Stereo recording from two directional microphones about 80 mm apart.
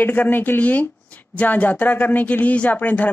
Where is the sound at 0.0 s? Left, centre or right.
Left.